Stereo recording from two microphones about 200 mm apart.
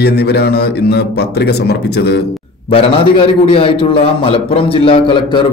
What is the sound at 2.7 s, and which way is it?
A man's voice, 25° left (ahead or behind).